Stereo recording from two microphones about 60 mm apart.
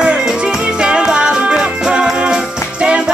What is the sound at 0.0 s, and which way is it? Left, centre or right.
Music, centre.